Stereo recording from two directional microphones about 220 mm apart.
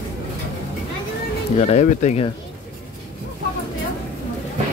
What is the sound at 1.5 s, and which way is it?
Speech, 30° left (ahead or behind).